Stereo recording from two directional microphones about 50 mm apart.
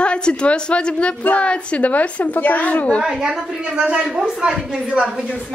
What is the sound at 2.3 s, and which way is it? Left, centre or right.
Speech, left.